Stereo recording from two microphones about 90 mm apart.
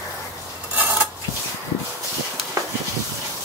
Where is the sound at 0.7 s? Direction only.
20° right (ahead or behind).